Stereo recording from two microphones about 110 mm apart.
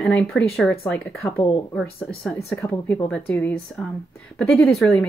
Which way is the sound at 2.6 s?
20° left (ahead or behind).